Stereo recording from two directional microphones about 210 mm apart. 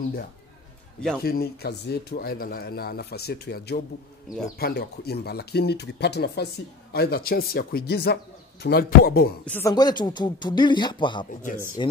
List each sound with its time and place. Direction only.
1.2 s speech: 45° left (ahead or behind)
9.5 s speech: 15° left (ahead or behind)
11.4 s speech: 40° left (ahead or behind)